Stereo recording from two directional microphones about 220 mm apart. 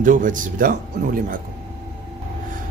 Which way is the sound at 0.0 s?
35° right (ahead or behind).